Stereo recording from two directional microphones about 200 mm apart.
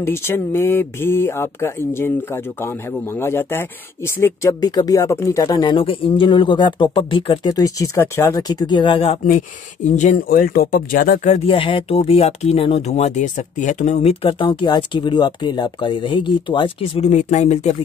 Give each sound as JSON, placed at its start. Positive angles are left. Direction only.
{"t": 0.0, "sound": "speech", "side_deg": 10}
{"t": 11.4, "sound": "speech", "side_deg": 25}